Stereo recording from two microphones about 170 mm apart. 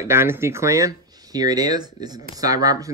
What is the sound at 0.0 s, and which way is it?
Speech, 15° right (ahead or behind).